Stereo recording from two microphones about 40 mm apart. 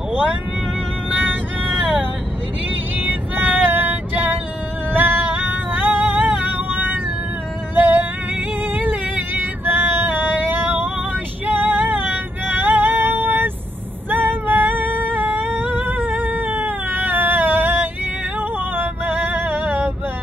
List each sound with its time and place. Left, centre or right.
1.1 s vehicle: right
3.0 s female singing: right
4.9 s music: right
6.3 s music: right
6.7 s music: right
7.7 s humming: right
8.7 s a sound: right
11.4 s female singing: right
14.1 s humming: right
15.6 s cat: right
18.8 s music: right